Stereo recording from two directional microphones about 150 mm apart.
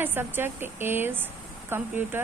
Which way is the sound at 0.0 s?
15° right (ahead or behind).